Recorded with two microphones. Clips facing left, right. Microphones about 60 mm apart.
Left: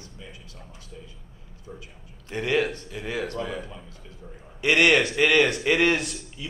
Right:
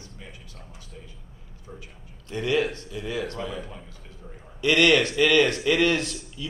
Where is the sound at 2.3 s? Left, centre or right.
Left.